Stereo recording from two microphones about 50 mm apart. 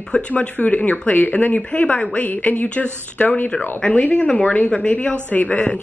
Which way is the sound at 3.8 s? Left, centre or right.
Left.